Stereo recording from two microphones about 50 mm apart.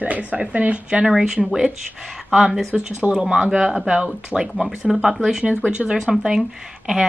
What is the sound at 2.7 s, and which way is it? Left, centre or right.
Speech, right.